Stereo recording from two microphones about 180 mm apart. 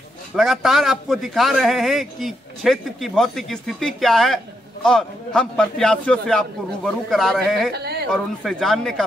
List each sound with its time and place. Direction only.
0.4 s a man's voice: centre (ahead or behind)
7.7 s a sound: 65° right (ahead or behind)
8.1 s a man's voice: centre (ahead or behind)